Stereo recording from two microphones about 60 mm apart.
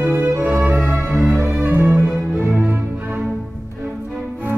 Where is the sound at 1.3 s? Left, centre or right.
Right.